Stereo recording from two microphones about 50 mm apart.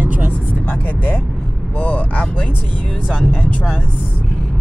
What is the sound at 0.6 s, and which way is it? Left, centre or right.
Speech, left.